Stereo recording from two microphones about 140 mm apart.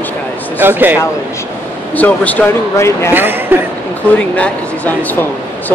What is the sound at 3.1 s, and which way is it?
Speech, 15° right (ahead or behind).